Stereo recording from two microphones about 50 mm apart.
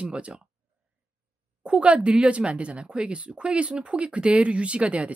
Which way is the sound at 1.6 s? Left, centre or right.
Right.